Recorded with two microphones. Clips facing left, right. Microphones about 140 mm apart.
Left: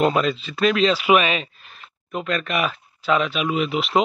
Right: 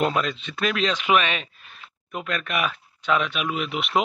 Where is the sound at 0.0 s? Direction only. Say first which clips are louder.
Left 4 dB; centre (ahead or behind).